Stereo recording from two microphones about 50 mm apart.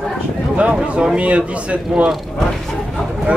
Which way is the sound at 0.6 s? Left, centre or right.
Centre.